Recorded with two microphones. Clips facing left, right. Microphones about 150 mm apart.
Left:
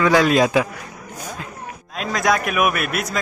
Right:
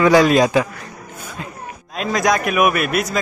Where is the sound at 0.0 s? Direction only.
5° right (ahead or behind).